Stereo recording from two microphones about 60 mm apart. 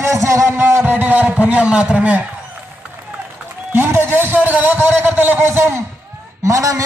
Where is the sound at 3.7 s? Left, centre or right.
Right.